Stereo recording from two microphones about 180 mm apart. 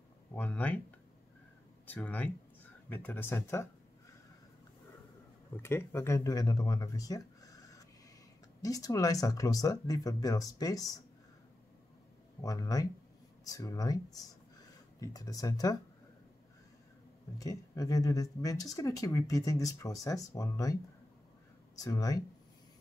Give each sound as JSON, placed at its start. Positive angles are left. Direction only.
{"t": 0.4, "sound": "speech", "side_deg": 10}
{"t": 1.9, "sound": "speech", "side_deg": 10}
{"t": 5.6, "sound": "speech", "side_deg": 15}
{"t": 12.4, "sound": "speech", "side_deg": 20}
{"t": 17.4, "sound": "speech", "side_deg": 20}
{"t": 21.7, "sound": "speech", "side_deg": 20}